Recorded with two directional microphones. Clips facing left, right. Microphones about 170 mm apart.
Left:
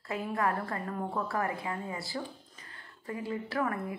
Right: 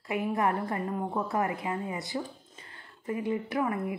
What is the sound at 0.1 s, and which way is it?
A woman's voice, 20° right (ahead or behind).